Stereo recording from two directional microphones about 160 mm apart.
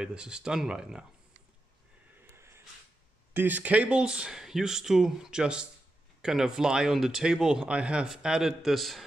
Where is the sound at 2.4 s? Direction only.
15° right (ahead or behind).